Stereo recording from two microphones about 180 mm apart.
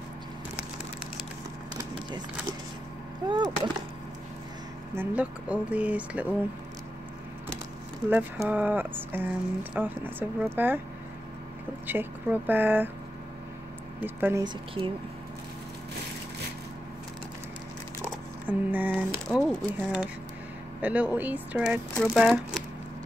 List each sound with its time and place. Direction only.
3.3 s a woman's voice: 25° right (ahead or behind)
4.9 s speech: 5° right (ahead or behind)
8.1 s speech: 10° right (ahead or behind)
11.9 s speech: 10° right (ahead or behind)
14.0 s speech: 10° right (ahead or behind)
14.4 s a woman's voice: 25° right (ahead or behind)
18.5 s speech: 10° right (ahead or behind)
19.2 s speech: centre (ahead or behind)
19.8 s speech: 10° right (ahead or behind)